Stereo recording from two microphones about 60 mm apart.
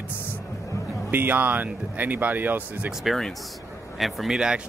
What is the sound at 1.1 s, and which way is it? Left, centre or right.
Speech, right.